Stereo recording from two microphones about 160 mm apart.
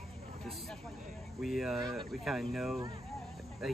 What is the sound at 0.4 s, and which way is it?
Speech, centre (ahead or behind).